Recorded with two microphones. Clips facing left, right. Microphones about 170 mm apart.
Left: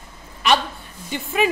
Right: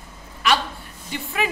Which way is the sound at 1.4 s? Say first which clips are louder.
Left 6 dB; 20° left (ahead or behind).